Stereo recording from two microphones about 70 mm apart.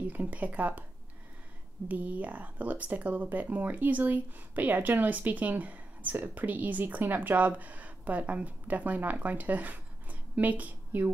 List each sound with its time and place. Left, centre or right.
0.0 s speech: right
1.9 s speech: right